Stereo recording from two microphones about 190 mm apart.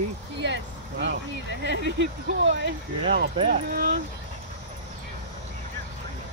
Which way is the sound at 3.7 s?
50° right (ahead or behind).